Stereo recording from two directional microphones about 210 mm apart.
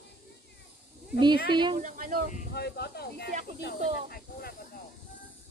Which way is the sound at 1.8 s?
40° right (ahead or behind).